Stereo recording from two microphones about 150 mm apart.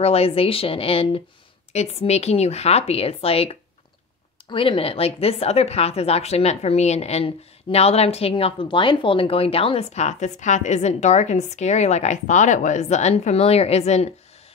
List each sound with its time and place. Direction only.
0.0 s a woman's voice: 40° left (ahead or behind)